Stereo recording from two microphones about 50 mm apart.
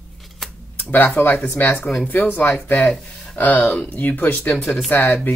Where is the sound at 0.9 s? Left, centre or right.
Left.